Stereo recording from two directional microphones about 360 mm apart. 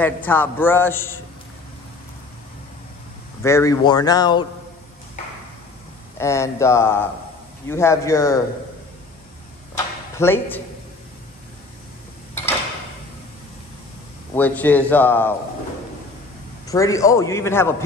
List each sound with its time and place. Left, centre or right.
0.0 s a man's voice: centre
3.4 s a man's voice: centre
6.1 s a man's voice: centre
10.1 s speech: centre
14.3 s a man's voice: centre
16.6 s a man's voice: centre